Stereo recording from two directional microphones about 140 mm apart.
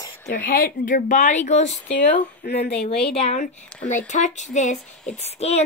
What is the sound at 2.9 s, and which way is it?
Speech, 45° left (ahead or behind).